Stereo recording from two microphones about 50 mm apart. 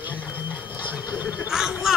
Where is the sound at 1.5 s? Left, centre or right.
Centre.